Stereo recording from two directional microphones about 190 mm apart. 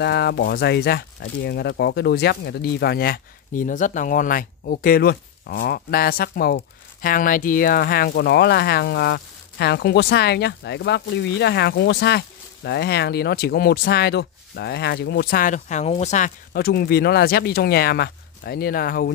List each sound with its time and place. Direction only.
0.0 s speech: 60° left (ahead or behind); by 16.3 s 35° left (ahead or behind)
16.5 s speech: 55° left (ahead or behind)